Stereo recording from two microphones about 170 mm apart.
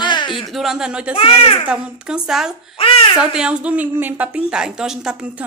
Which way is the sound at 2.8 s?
30° left (ahead or behind).